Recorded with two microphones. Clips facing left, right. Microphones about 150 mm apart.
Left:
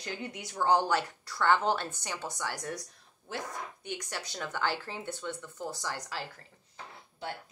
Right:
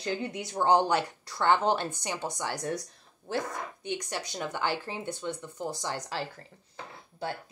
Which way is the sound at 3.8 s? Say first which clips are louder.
Right 6 dB; 20° right (ahead or behind).